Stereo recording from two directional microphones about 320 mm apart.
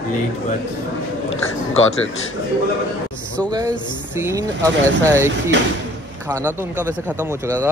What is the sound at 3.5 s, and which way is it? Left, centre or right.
Speech, centre.